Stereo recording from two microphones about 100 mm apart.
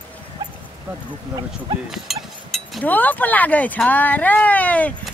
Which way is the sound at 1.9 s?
Centre (ahead or behind).